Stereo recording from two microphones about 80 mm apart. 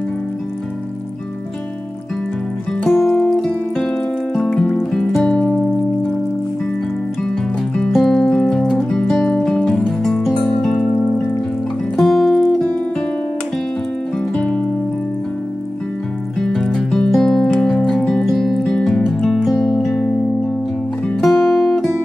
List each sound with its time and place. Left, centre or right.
2.8 s music: centre
7.7 s music: centre
10.8 s music: centre
12.0 s music: centre
14.3 s music: centre
16.3 s music: centre
21.2 s music: centre